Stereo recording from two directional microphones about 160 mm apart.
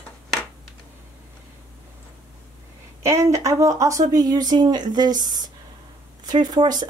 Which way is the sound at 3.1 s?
20° right (ahead or behind).